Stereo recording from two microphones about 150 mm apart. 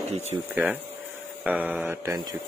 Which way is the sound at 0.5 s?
10° right (ahead or behind).